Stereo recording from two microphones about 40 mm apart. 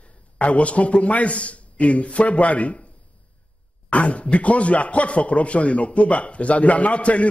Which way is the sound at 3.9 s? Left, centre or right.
Left.